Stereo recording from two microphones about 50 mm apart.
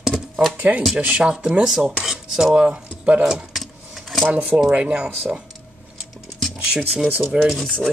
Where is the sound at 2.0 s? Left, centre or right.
Centre.